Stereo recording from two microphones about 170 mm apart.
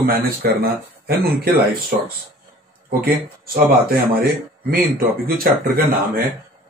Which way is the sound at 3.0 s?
60° right (ahead or behind).